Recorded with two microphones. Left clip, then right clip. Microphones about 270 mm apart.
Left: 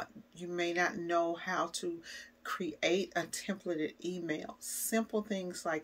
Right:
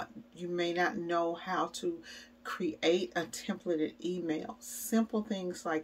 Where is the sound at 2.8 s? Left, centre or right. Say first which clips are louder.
Right 2 dB; left.